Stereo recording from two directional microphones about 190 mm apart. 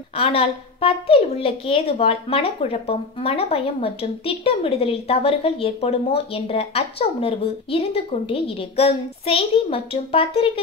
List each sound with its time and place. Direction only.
0.1 s a woman's voice: 30° left (ahead or behind)